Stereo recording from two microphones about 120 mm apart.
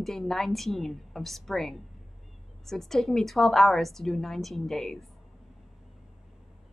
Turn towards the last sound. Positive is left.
turn(degrees=0)  # may be behind; listen again after turning